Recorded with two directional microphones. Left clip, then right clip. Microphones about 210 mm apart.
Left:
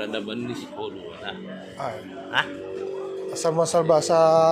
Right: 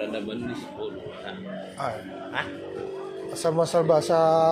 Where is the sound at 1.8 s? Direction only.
5° right (ahead or behind).